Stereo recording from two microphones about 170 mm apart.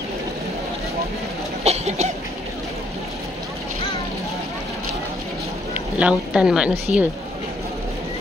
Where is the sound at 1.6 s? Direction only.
40° right (ahead or behind).